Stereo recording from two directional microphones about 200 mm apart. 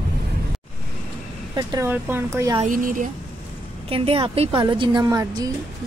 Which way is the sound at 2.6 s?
40° right (ahead or behind).